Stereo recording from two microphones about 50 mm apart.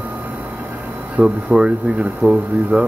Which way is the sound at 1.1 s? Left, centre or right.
Centre.